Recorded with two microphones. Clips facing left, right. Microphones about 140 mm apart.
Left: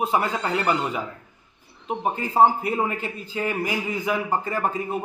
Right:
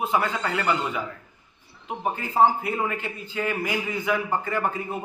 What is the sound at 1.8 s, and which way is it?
A man's voice, 30° left (ahead or behind).